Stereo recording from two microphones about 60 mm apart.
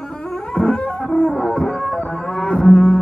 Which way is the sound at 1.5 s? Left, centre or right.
Centre.